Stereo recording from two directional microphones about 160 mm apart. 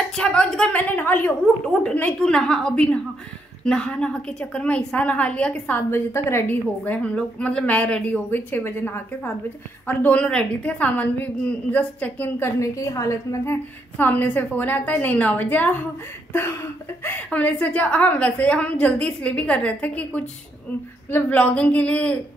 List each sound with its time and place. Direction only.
0.1 s a woman's voice: 5° left (ahead or behind)
17.0 s a woman's voice: 10° left (ahead or behind)